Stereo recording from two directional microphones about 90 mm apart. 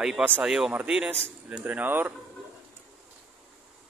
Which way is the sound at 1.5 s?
15° right (ahead or behind).